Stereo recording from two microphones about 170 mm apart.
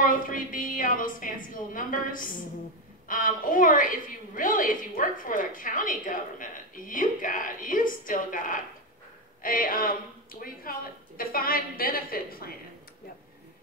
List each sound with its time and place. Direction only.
0.0 s a woman's voice: 55° left (ahead or behind)